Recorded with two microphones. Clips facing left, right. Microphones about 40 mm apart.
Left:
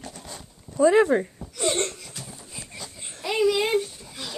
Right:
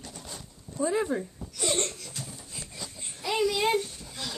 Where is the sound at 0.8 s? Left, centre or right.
Left.